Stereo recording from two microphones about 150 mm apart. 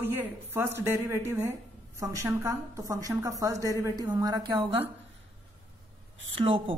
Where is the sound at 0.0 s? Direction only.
15° right (ahead or behind); by 4.8 s 30° right (ahead or behind).